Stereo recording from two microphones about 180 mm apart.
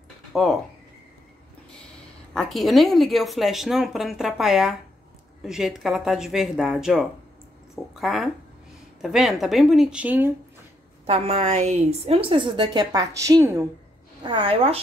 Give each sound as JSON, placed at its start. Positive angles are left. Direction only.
{"t": 0.3, "sound": "speech", "side_deg": 0}
{"t": 2.3, "sound": "speech", "side_deg": 0}
{"t": 11.1, "sound": "a woman's voice", "side_deg": -35}
{"t": 14.2, "sound": "a woman's voice", "side_deg": -30}